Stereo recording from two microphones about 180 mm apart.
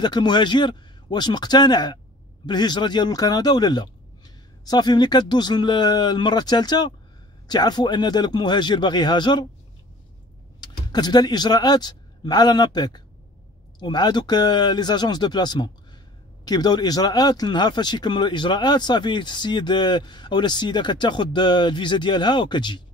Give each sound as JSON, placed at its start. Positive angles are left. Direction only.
{"t": 0.0, "sound": "speech", "side_deg": 25}
{"t": 10.6, "sound": "speech", "side_deg": 25}